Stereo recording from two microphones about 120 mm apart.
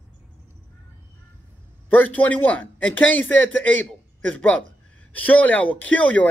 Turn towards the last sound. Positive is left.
turn(degrees=10)  # may be behind; listen again after turning